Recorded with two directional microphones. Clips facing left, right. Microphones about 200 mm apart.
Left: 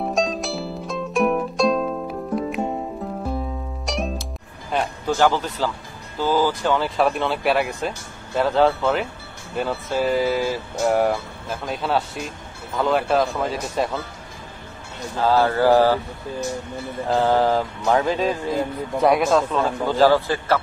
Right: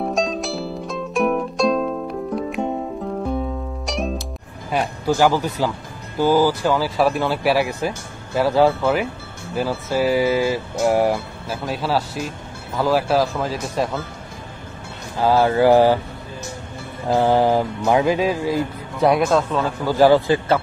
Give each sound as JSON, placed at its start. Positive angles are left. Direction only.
{"t": 0.0, "sound": "music", "side_deg": 0}
{"t": 3.8, "sound": "music", "side_deg": 0}
{"t": 4.7, "sound": "speech", "side_deg": -10}
{"t": 15.1, "sound": "speech", "side_deg": -15}
{"t": 17.1, "sound": "speech", "side_deg": -15}
{"t": 18.9, "sound": "speech", "side_deg": 0}
{"t": 20.0, "sound": "speech", "side_deg": -15}